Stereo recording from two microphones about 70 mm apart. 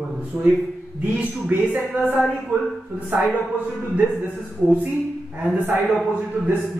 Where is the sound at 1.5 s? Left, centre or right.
Right.